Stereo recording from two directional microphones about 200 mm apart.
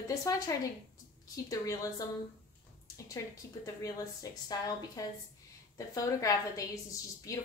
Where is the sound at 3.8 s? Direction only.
15° left (ahead or behind).